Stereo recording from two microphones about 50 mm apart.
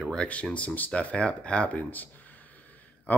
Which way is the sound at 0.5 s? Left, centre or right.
Left.